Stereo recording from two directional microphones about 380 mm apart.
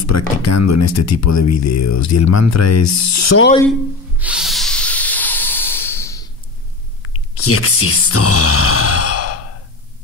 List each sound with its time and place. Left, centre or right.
0.0 s speech: left
4.2 s hiss: centre
7.0 s a sound: left